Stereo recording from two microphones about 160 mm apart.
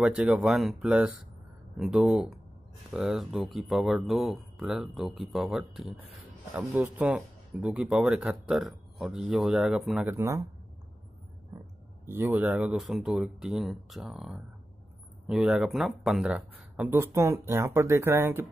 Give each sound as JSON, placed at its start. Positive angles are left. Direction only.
{"t": 0.0, "sound": "speech", "side_deg": -5}
{"t": 10.0, "sound": "speech", "side_deg": -15}
{"t": 11.5, "sound": "a sound", "side_deg": -20}
{"t": 12.1, "sound": "speech", "side_deg": -15}